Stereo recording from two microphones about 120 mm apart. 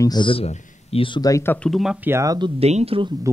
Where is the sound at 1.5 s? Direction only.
10° left (ahead or behind).